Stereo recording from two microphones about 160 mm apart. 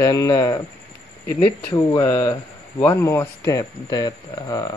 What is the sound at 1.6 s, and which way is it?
Speech, 20° left (ahead or behind).